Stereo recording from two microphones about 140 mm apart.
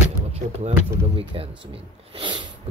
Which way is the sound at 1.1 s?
40° right (ahead or behind).